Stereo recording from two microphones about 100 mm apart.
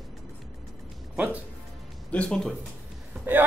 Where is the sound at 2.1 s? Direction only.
10° left (ahead or behind).